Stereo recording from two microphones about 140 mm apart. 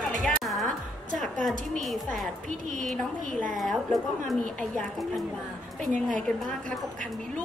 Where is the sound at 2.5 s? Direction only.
70° right (ahead or behind).